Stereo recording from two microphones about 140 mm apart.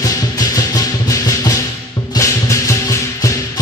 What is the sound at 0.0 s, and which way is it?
Music, 25° left (ahead or behind).